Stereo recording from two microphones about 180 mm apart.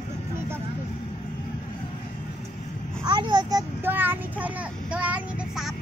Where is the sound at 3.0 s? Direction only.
25° right (ahead or behind).